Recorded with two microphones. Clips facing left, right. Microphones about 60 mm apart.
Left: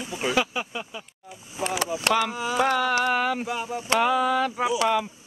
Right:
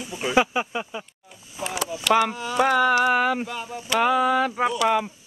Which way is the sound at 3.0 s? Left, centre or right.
Centre.